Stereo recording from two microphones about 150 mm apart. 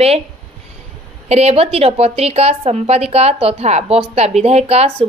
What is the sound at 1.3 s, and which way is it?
A woman's voice, 45° right (ahead or behind).